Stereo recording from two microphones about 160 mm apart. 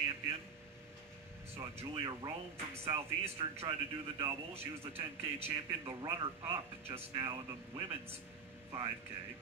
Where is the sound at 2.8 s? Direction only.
35° right (ahead or behind).